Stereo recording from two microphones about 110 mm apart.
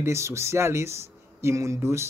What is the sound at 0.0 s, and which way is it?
Speech, 25° right (ahead or behind).